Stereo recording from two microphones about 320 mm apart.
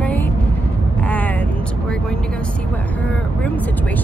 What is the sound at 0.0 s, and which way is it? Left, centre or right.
Music, centre.